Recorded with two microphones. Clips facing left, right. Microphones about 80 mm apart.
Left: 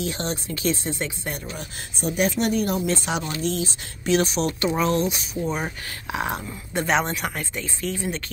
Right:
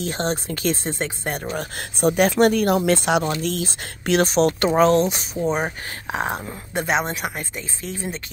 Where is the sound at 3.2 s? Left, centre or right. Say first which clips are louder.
Right 3 dB; right.